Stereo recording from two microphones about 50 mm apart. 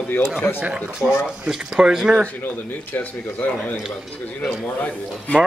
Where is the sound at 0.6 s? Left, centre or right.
Right.